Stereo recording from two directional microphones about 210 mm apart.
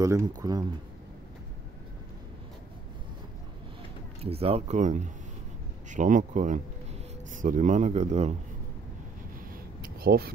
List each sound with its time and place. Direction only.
0.0 s speech: 15° right (ahead or behind)
4.2 s a man's voice: 30° right (ahead or behind)
9.5 s a sound: 45° right (ahead or behind)